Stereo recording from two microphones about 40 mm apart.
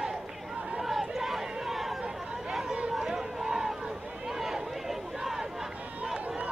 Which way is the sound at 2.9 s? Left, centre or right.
Centre.